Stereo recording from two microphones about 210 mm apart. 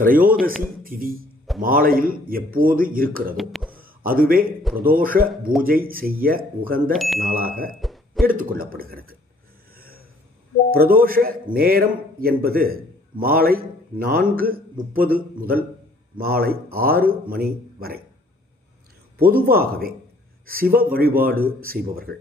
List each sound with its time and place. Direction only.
0.0 s a man's voice: 40° right (ahead or behind)
3.3 s cough: centre (ahead or behind)
3.7 s a sound: 45° right (ahead or behind)
4.7 s speech: 40° right (ahead or behind)
6.9 s cough: centre (ahead or behind)
7.2 s speech: 45° right (ahead or behind)
7.8 s a sound: centre (ahead or behind)
8.3 s speech: 45° right (ahead or behind)
9.8 s a sound: 45° right (ahead or behind)
10.7 s speech: 45° right (ahead or behind)
19.1 s speech: 45° right (ahead or behind)